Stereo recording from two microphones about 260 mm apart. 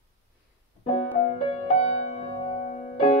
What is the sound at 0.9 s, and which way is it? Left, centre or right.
Music, left.